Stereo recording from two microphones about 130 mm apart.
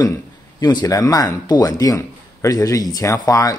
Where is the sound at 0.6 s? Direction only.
30° left (ahead or behind).